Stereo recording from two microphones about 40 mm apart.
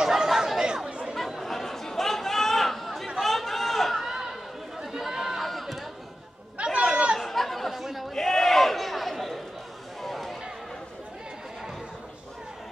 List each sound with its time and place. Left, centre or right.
0.0 s chatter: centre
0.8 s chatter: right
1.4 s chatter: centre
3.9 s a sound: centre
4.9 s chatter: centre
5.4 s a sound: centre
6.6 s chatter: right
7.2 s chatter: centre
8.1 s chatter: centre
10.0 s a sound: centre